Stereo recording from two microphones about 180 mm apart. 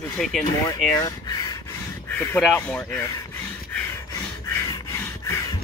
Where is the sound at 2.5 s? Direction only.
10° left (ahead or behind).